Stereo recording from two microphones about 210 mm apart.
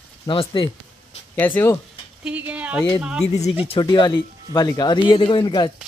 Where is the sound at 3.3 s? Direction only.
30° left (ahead or behind).